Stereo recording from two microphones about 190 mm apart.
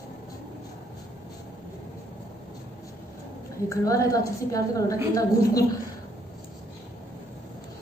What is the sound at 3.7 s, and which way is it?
A woman's voice, 15° left (ahead or behind).